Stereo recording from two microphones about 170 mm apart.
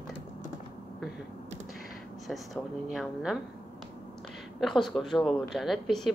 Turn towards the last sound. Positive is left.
turn(degrees=0)  # may be behind; listen again after turning